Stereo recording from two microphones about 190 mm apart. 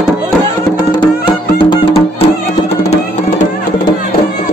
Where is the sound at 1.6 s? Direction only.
25° left (ahead or behind).